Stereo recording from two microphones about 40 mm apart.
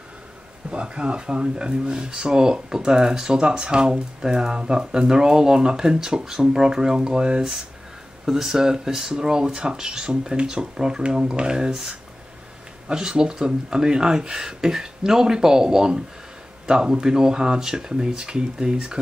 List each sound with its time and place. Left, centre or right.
0.7 s speech: right
8.3 s speech: centre
12.8 s speech: centre